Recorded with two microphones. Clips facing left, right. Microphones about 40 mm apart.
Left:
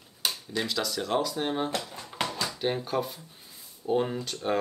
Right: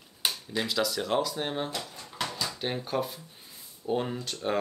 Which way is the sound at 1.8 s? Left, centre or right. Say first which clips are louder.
Left 4 dB; left.